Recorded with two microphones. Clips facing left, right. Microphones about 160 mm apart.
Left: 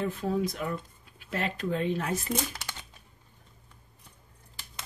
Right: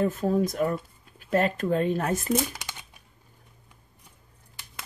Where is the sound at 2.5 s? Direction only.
15° right (ahead or behind).